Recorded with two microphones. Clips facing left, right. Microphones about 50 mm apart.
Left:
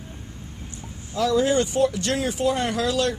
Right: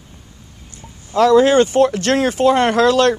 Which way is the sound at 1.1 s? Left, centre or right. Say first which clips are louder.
Right 9 dB; right.